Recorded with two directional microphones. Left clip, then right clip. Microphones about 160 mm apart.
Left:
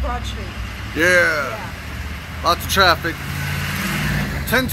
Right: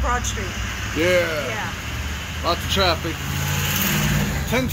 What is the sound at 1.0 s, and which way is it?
Speech, 5° left (ahead or behind).